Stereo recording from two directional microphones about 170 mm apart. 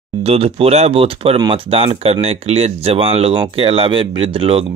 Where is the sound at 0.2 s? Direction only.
35° right (ahead or behind).